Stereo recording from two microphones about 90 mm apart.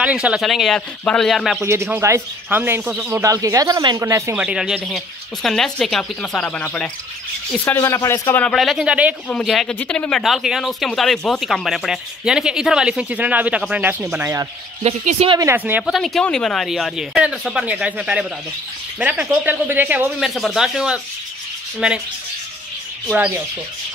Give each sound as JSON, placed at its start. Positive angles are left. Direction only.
{"t": 0.0, "sound": "speech", "side_deg": -15}
{"t": 0.4, "sound": "speech", "side_deg": 0}
{"t": 1.6, "sound": "a man's voice", "side_deg": -30}
{"t": 4.4, "sound": "speech", "side_deg": -10}
{"t": 7.8, "sound": "speech", "side_deg": 35}
{"t": 8.5, "sound": "speech", "side_deg": 0}
{"t": 8.8, "sound": "speech", "side_deg": -15}
{"t": 9.3, "sound": "speech", "side_deg": 0}
{"t": 15.5, "sound": "speech", "side_deg": -20}
{"t": 15.8, "sound": "speech", "side_deg": 0}
{"t": 20.2, "sound": "speech", "side_deg": 0}